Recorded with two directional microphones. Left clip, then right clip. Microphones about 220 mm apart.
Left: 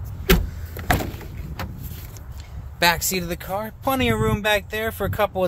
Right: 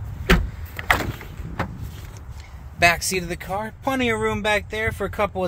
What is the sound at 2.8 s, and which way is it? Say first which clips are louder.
Speech: right 1 dB; 10° left (ahead or behind).